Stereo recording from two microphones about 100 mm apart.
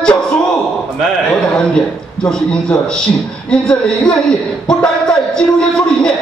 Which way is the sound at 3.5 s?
5° left (ahead or behind).